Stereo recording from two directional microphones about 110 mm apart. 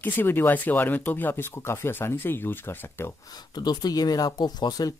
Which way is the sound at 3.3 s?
40° left (ahead or behind).